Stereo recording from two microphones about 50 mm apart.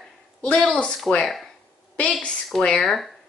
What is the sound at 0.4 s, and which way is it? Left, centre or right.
Speech, centre.